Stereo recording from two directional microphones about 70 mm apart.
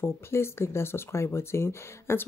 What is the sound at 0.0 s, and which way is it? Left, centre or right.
Speech, left.